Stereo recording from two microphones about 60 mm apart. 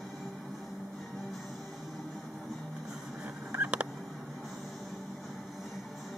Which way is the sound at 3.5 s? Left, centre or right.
Right.